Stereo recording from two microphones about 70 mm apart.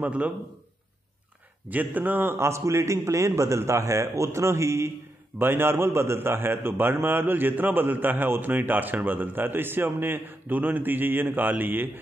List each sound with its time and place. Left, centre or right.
0.0 s a man's voice: right
1.7 s a man's voice: right